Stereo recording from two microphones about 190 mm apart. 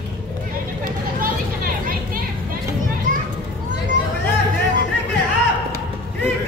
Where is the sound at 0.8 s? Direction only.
50° right (ahead or behind).